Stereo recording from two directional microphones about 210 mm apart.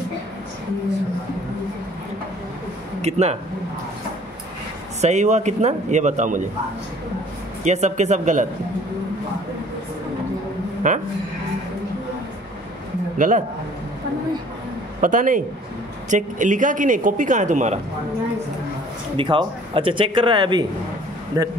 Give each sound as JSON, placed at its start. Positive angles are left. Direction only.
{"t": 3.0, "sound": "speech", "side_deg": -30}
{"t": 5.0, "sound": "speech", "side_deg": -35}
{"t": 7.6, "sound": "speech", "side_deg": -35}
{"t": 10.8, "sound": "speech", "side_deg": -40}
{"t": 13.2, "sound": "speech", "side_deg": -40}
{"t": 15.0, "sound": "speech", "side_deg": -40}
{"t": 19.1, "sound": "speech", "side_deg": -25}